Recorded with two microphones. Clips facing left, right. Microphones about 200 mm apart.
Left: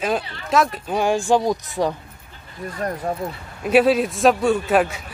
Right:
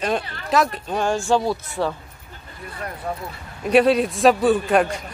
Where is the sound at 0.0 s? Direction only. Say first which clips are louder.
Left 1 dB; centre (ahead or behind).